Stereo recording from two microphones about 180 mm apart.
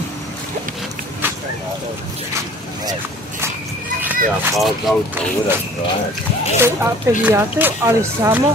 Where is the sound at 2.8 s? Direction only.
20° right (ahead or behind).